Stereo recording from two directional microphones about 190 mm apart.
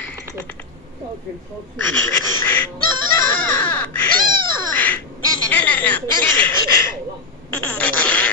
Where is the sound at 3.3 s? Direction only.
10° left (ahead or behind).